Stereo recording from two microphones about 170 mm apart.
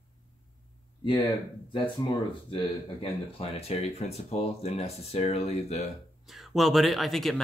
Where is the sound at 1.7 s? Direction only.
30° left (ahead or behind).